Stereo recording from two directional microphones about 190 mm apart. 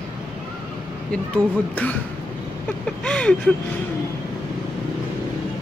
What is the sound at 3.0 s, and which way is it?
Speech, 5° left (ahead or behind).